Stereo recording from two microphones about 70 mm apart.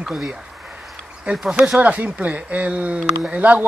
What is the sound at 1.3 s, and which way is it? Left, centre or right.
Speech, centre.